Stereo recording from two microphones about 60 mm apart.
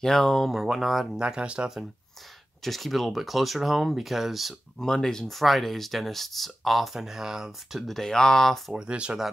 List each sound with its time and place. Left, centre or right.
0.0 s speech: centre
1.2 s speech: centre
2.6 s speech: centre
4.7 s speech: centre
8.7 s speech: centre